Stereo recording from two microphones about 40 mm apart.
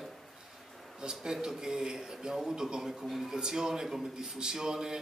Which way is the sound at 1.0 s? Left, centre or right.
Centre.